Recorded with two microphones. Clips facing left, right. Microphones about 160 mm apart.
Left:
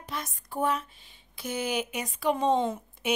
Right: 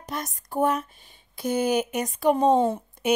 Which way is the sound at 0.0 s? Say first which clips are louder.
Right 4 dB; 40° right (ahead or behind).